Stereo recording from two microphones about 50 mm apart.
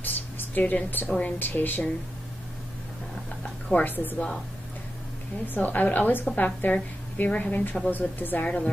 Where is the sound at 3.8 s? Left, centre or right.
Left.